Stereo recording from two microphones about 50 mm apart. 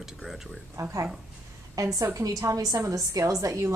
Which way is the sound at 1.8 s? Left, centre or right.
Right.